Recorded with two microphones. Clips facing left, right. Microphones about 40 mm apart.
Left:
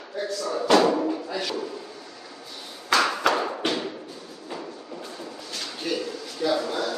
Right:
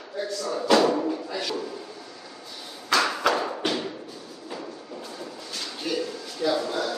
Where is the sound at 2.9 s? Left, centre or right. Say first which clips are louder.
Left 1 dB; centre.